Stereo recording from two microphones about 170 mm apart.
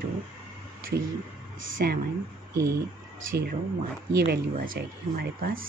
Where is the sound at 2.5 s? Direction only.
20° right (ahead or behind).